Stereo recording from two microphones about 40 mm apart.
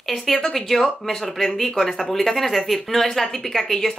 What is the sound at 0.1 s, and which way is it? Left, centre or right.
Speech, centre.